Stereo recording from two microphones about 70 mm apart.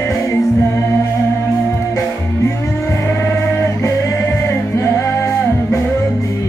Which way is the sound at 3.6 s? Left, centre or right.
Left.